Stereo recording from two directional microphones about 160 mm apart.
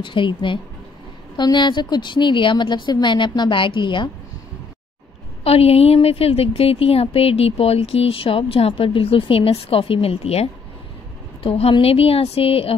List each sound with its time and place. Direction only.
0.0 s a woman's voice: 30° left (ahead or behind)
5.4 s a woman's voice: 40° left (ahead or behind)